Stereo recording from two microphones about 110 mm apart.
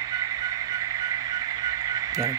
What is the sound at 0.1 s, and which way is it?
Music, 35° right (ahead or behind).